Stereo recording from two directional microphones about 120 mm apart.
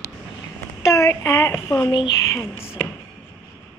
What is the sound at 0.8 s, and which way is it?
Speech, 25° left (ahead or behind).